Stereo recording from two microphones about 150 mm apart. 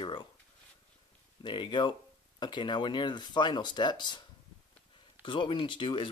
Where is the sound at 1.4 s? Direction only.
30° left (ahead or behind).